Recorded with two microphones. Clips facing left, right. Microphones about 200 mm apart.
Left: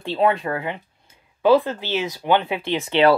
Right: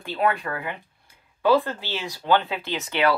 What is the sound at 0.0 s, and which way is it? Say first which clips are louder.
Speech: left 4 dB; 25° left (ahead or behind).